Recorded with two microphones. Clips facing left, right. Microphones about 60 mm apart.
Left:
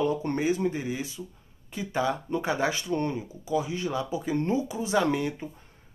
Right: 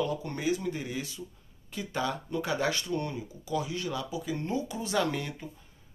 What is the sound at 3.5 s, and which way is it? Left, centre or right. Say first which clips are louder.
Speech: left 4 dB; left.